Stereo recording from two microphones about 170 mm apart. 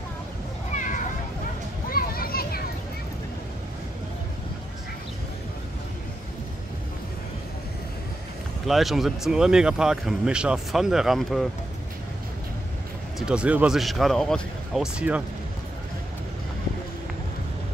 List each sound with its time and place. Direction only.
0.7 s a sound: 50° left (ahead or behind)
1.9 s children playing: 60° left (ahead or behind)
8.6 s speech: centre (ahead or behind)
13.2 s speech: 5° right (ahead or behind)